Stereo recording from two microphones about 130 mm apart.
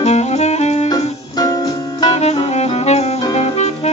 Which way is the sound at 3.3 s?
60° left (ahead or behind).